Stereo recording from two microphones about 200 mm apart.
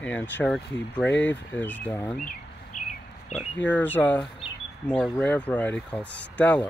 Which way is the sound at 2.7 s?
40° left (ahead or behind).